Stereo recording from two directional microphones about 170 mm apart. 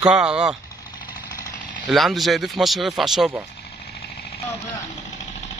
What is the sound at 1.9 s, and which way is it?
Speech, centre (ahead or behind).